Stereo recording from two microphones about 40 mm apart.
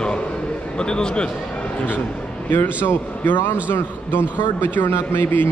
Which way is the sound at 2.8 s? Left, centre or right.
Left.